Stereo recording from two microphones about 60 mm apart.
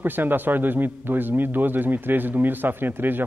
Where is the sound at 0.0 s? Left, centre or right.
Right.